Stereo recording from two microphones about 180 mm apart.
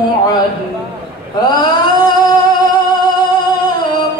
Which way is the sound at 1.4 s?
25° left (ahead or behind).